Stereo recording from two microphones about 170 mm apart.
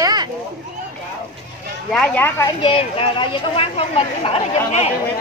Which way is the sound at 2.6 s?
30° left (ahead or behind).